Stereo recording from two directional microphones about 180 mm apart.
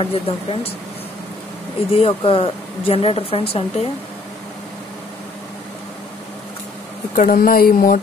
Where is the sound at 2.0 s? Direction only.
30° left (ahead or behind).